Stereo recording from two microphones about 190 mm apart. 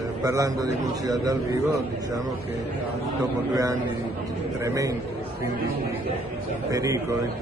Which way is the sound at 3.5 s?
20° right (ahead or behind).